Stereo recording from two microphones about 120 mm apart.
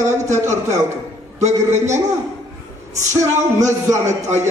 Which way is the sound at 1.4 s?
75° right (ahead or behind).